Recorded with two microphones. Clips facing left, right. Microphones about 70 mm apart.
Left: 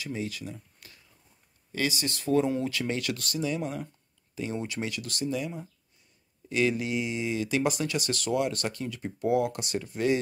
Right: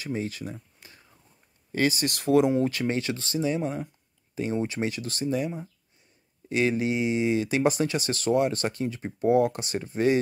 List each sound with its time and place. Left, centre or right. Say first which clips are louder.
0.0 s speech: right 3 dB; right
2.0 s speech: right 3 dB; right
2.6 s speech: right 4 dB; right
6.5 s speech: right 2 dB; right